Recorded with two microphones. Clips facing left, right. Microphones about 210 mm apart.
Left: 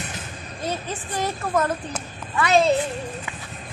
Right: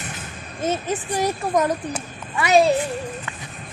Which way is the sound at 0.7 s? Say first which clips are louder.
Right 6 dB; 15° right (ahead or behind).